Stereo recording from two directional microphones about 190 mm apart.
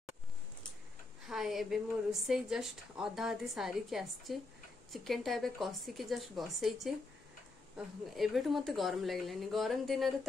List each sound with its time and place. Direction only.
1.2 s a woman's voice: centre (ahead or behind)